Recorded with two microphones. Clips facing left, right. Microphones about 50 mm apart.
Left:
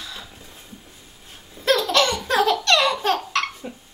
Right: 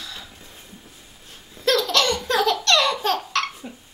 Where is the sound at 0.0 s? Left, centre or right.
Centre.